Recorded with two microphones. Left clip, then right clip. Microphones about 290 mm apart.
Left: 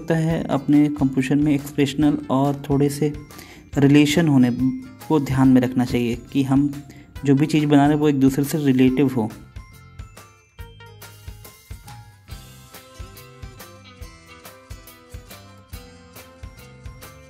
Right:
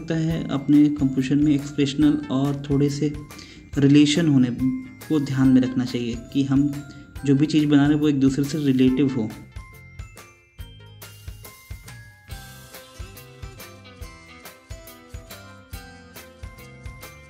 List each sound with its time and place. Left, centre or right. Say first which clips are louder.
0.0 s speech: left 4 dB; left
15.2 s music: right 1 dB; centre